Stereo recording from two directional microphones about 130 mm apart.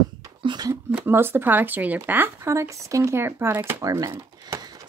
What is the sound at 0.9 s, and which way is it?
Speech, 15° right (ahead or behind).